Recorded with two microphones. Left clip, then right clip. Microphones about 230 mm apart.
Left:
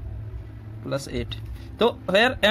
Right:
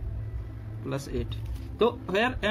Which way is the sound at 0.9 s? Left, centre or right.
Left.